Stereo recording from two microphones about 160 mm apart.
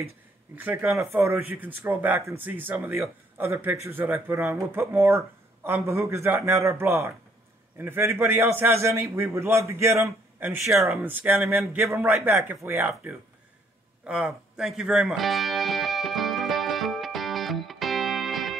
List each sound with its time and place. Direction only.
0.6 s speech: 15° right (ahead or behind)
10.6 s speech: centre (ahead or behind)
11.1 s speech: 10° right (ahead or behind)
14.0 s music: 5° right (ahead or behind)